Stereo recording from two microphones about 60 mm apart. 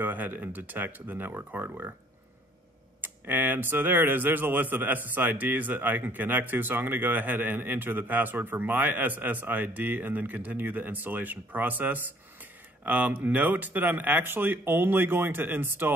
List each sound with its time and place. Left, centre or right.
0.0 s speech: right
3.0 s speech: right